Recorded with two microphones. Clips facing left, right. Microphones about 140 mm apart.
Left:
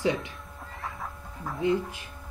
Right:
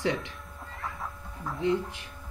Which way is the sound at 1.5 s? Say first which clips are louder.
Left 1 dB; 5° left (ahead or behind).